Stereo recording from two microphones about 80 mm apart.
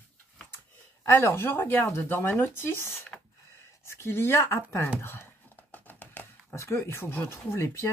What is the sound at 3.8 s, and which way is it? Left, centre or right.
Speech, left.